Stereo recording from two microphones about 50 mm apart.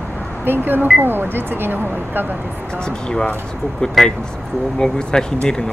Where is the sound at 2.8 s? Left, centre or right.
Centre.